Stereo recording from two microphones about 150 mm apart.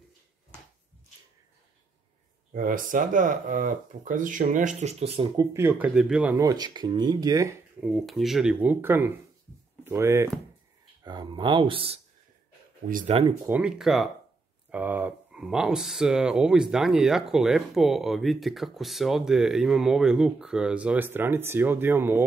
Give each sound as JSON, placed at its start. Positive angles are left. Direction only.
{"t": 2.5, "sound": "speech", "side_deg": -65}
{"t": 5.5, "sound": "speech", "side_deg": -15}
{"t": 6.4, "sound": "speech", "side_deg": -25}
{"t": 7.8, "sound": "speech", "side_deg": 0}
{"t": 11.1, "sound": "speech", "side_deg": -30}
{"t": 12.9, "sound": "speech", "side_deg": -55}
{"t": 13.5, "sound": "speech", "side_deg": -5}